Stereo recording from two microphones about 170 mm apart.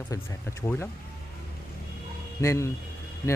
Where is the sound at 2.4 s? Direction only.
15° left (ahead or behind).